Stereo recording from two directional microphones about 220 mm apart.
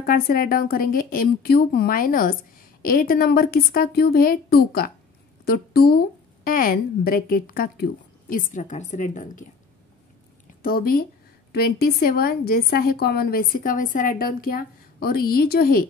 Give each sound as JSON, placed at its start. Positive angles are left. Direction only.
{"t": 0.0, "sound": "a woman's voice", "side_deg": 40}
{"t": 10.6, "sound": "a woman's voice", "side_deg": 40}